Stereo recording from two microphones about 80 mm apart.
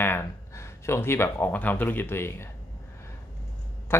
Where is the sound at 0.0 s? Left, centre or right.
Left.